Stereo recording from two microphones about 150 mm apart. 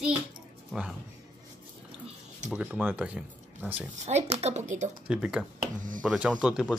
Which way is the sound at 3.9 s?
45° right (ahead or behind).